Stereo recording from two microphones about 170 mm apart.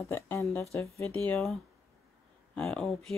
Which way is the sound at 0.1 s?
15° left (ahead or behind).